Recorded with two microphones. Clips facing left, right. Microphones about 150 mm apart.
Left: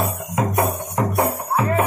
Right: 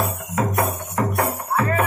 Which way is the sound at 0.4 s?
20° left (ahead or behind).